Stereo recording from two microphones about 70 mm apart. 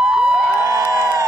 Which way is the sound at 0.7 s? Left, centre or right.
Right.